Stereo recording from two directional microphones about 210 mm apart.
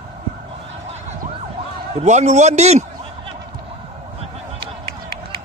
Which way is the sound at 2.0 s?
35° right (ahead or behind).